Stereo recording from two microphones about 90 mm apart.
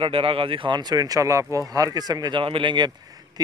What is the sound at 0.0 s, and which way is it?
Speech, 90° right.